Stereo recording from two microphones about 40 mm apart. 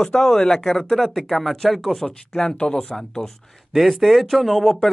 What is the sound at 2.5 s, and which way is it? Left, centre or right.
Speech, left.